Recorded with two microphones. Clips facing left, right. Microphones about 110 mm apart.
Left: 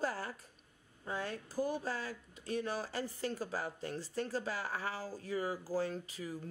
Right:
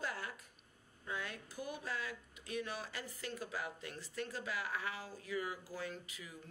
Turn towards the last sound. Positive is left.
turn(degrees=35)  # may be behind; listen again after turning